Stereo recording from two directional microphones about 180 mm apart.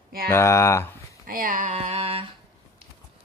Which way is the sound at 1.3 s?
50° right (ahead or behind).